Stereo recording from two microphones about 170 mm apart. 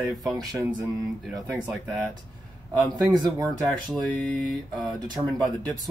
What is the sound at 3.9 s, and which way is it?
Speech, 5° left (ahead or behind).